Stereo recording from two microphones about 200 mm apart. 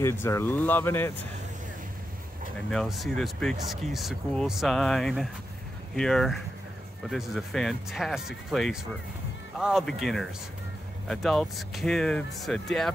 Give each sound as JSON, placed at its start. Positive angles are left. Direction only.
{"t": 0.0, "sound": "speech", "side_deg": 15}
{"t": 2.7, "sound": "speech", "side_deg": 0}